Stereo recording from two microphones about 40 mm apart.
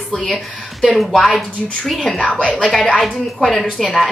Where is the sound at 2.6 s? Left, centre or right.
Centre.